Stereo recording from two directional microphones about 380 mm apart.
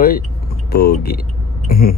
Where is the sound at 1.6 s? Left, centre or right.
Left.